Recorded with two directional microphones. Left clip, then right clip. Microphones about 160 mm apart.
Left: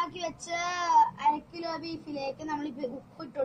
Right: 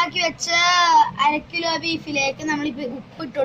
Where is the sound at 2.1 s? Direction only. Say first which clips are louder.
Right 12 dB; 50° left (ahead or behind).